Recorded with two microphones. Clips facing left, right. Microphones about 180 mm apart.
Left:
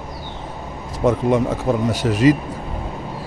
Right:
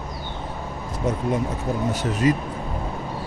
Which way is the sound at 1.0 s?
70° left (ahead or behind).